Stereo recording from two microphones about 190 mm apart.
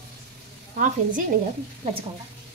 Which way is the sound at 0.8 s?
45° right (ahead or behind).